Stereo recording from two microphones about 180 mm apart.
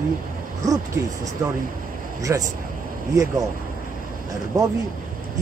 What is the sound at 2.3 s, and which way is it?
Speech, 15° right (ahead or behind).